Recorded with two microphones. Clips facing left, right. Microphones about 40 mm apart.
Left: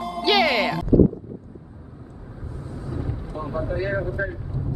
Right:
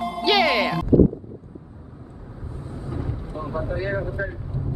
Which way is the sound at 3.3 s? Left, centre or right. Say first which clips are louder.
Left 1 dB; centre.